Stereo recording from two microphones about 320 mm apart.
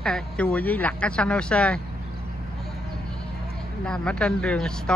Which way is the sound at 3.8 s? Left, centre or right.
Centre.